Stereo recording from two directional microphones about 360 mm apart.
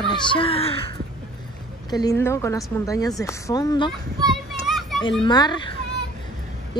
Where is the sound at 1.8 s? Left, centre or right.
Centre.